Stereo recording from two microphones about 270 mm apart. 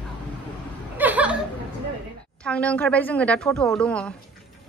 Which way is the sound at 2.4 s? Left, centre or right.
Centre.